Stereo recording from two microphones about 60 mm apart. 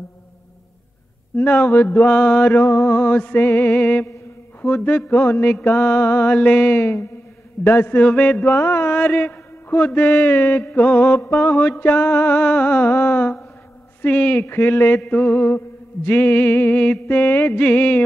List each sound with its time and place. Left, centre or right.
1.3 s mantra: left
2.0 s mantra: left
8.4 s mantra: left
11.1 s mantra: left
14.4 s mantra: left
15.0 s mantra: left
15.3 s mantra: left